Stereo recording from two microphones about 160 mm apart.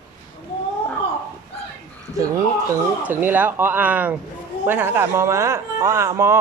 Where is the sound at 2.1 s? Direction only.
20° right (ahead or behind).